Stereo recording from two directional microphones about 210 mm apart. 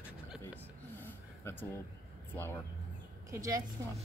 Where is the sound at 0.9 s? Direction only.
10° left (ahead or behind).